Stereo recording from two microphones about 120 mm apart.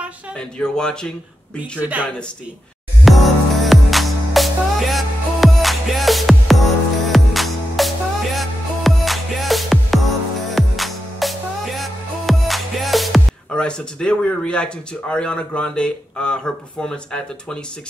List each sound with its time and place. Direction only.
0.4 s speech: 5° left (ahead or behind)
1.8 s speech: 10° right (ahead or behind)
3.1 s music: centre (ahead or behind)